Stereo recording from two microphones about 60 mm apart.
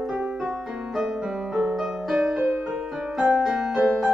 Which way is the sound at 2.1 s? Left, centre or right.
Right.